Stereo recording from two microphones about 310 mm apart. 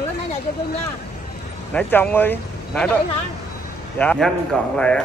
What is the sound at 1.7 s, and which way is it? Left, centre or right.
Speech, centre.